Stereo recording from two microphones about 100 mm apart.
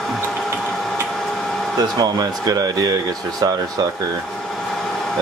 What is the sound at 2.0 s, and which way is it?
Speech, 40° right (ahead or behind).